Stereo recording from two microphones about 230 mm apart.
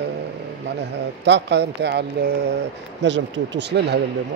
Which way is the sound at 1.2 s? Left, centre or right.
Right.